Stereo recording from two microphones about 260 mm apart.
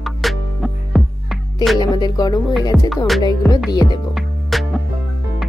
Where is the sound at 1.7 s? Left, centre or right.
Centre.